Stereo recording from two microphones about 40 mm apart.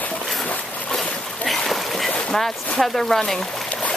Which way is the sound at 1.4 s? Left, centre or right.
Centre.